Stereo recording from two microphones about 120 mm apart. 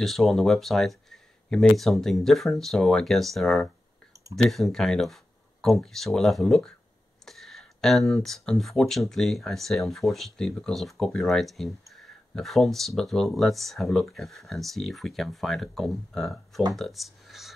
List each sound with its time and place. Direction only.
0.0 s speech: centre (ahead or behind)
4.1 s clicking: 25° right (ahead or behind)
4.4 s speech: centre (ahead or behind)